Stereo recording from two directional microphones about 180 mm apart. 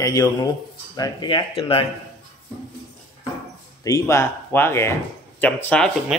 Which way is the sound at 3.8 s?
15° left (ahead or behind).